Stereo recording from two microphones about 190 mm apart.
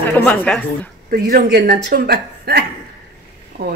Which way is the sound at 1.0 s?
50° right (ahead or behind).